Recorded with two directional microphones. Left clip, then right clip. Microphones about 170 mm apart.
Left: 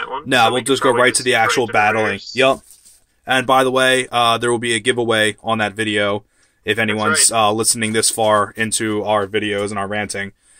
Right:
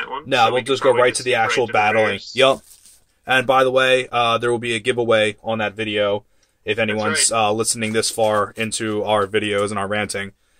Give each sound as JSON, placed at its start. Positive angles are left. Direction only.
{"t": 0.3, "sound": "speech", "side_deg": 40}
{"t": 7.2, "sound": "speech", "side_deg": 30}